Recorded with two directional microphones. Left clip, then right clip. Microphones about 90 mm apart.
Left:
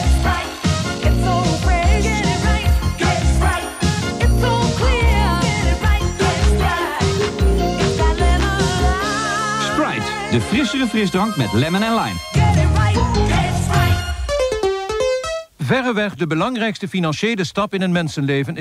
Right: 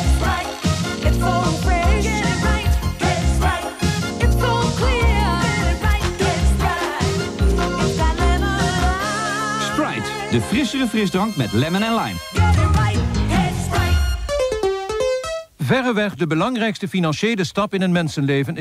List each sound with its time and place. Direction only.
0.7 s music: 25° left (ahead or behind)
7.8 s music: 30° left (ahead or behind)
10.3 s music: 25° left (ahead or behind)
14.3 s music: 20° left (ahead or behind)
15.7 s speech: 30° left (ahead or behind)